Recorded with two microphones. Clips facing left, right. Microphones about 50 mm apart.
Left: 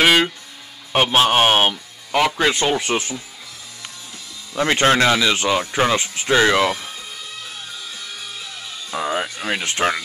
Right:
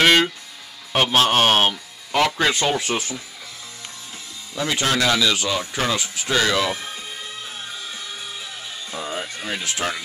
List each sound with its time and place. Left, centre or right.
0.0 s music: centre
0.9 s speech: centre
4.6 s speech: left
8.9 s music: left